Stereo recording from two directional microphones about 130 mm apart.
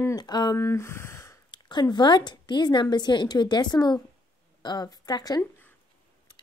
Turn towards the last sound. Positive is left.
turn(degrees=30)  # may be behind; listen again after turning